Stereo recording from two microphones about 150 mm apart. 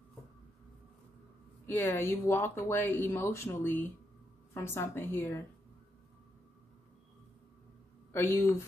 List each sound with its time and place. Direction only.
1.7 s speech: 15° left (ahead or behind)
8.1 s speech: 15° left (ahead or behind)